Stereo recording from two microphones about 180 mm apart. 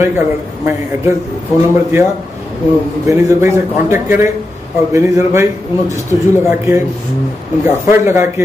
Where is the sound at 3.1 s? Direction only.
15° right (ahead or behind).